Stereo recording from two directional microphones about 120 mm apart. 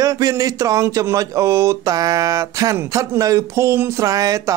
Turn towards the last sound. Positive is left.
turn(degrees=-30)  # may be behind; listen again after turning